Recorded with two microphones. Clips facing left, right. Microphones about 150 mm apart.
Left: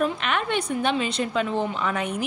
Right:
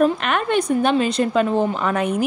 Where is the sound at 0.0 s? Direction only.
45° right (ahead or behind).